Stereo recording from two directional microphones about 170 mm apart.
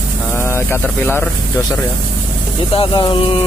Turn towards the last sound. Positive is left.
turn(degrees=25)  # may be behind; listen again after turning